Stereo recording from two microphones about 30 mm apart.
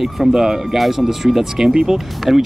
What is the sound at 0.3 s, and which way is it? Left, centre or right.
Speech, centre.